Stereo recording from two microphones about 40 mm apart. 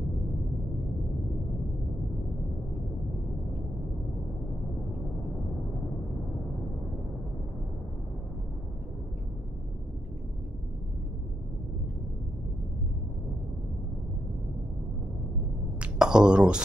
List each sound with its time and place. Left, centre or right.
16.0 s speech: right